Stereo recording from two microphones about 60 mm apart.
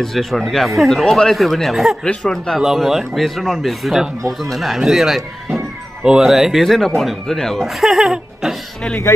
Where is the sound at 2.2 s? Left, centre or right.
Centre.